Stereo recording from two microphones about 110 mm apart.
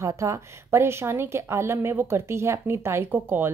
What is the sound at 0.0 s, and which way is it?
A woman's voice, 25° right (ahead or behind).